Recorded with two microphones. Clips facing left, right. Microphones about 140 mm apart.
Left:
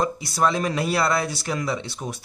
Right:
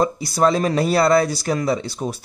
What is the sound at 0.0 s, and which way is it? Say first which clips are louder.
A man's voice: right 5 dB; 35° right (ahead or behind).